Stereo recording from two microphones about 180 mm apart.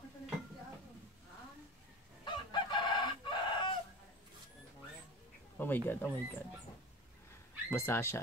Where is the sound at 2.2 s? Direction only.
25° left (ahead or behind).